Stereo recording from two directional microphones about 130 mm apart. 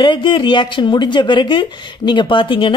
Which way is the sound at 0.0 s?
40° left (ahead or behind).